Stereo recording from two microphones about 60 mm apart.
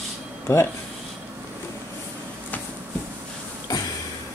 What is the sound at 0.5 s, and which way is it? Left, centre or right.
Speech, left.